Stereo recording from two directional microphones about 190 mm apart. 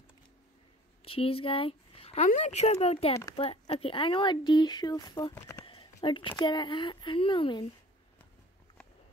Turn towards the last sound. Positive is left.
turn(degrees=25)  # may be behind; listen again after turning